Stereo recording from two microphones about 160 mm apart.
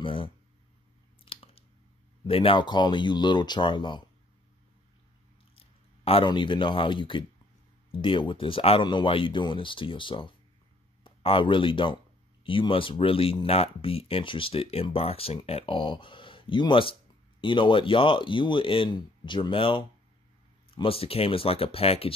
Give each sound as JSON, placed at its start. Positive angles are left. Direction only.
{"t": 0.0, "sound": "a sound", "side_deg": 35}
{"t": 2.2, "sound": "speech", "side_deg": 35}
{"t": 5.6, "sound": "speech", "side_deg": 35}